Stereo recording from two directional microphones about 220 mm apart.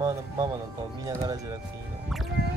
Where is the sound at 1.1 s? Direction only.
15° right (ahead or behind).